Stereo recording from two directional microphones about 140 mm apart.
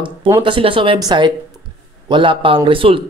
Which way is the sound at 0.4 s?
35° right (ahead or behind).